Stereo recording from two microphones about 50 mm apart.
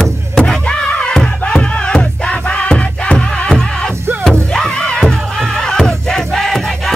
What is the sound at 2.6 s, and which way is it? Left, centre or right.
Music, centre.